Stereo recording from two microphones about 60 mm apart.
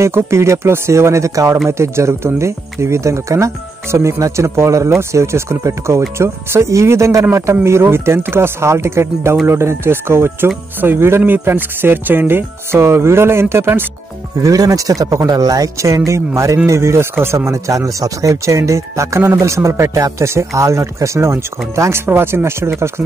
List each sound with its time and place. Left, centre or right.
0.0 s speech: right
7.6 s speech: right
14.4 s speech: right
17.5 s speech: right